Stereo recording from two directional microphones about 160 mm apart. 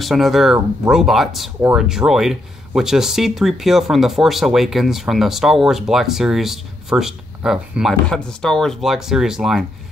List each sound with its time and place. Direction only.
0.0 s speech: centre (ahead or behind)